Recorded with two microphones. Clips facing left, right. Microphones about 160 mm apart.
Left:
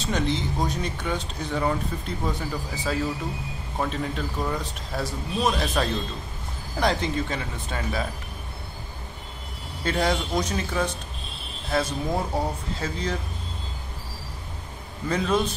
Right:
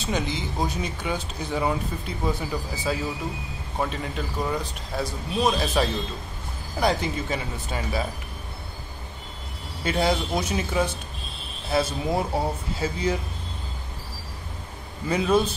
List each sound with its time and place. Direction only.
0.0 s speech: 5° right (ahead or behind)
9.8 s speech: 5° right (ahead or behind)
15.0 s speech: 10° right (ahead or behind)